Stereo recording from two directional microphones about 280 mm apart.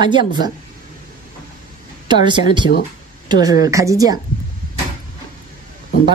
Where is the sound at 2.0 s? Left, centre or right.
Centre.